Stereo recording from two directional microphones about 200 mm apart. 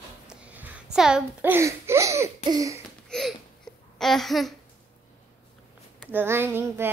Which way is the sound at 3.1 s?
Centre (ahead or behind).